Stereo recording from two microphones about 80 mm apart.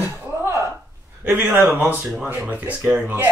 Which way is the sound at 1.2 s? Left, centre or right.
Right.